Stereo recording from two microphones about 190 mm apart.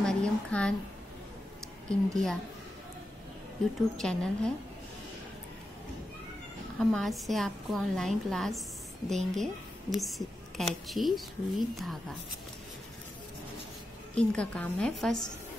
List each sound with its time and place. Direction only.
0.0 s a sound: 5° left (ahead or behind)
1.9 s a woman's voice: centre (ahead or behind)
3.9 s a woman's voice: 5° left (ahead or behind)
6.8 s a woman's voice: centre (ahead or behind)
14.1 s a woman's voice: 5° left (ahead or behind)